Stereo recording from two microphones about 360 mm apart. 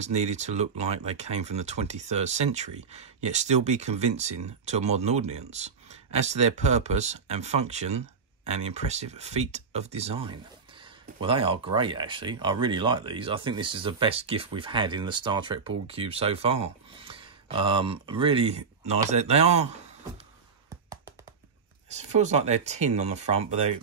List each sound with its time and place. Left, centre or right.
0.0 s speech: centre
21.8 s speech: centre